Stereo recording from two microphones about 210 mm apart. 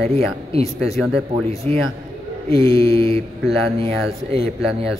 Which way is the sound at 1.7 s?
30° right (ahead or behind).